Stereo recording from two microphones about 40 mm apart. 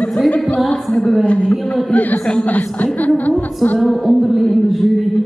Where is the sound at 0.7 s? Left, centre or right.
Centre.